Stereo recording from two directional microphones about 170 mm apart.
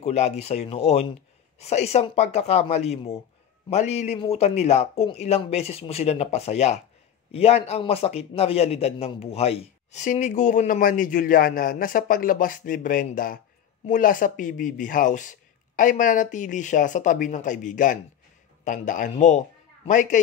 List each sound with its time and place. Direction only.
0.0 s a man's voice: 40° left (ahead or behind)